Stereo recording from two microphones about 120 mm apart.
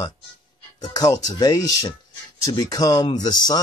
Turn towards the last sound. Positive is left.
turn(degrees=35)  # may be behind; listen again after turning